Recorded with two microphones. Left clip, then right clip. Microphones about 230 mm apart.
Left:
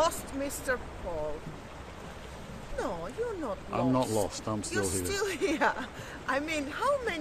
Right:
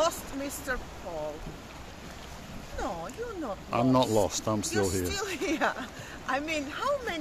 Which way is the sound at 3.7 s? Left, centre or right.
Right.